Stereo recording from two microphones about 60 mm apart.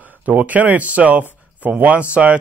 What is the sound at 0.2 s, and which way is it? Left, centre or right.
A man's voice, right.